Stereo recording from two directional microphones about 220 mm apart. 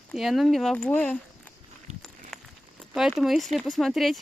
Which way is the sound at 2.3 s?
Centre (ahead or behind).